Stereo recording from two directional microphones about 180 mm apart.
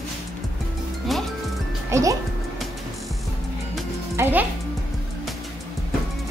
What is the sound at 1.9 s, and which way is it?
Speech, 20° right (ahead or behind).